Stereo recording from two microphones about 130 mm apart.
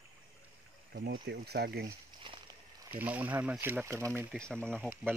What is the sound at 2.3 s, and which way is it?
Speech, 35° right (ahead or behind).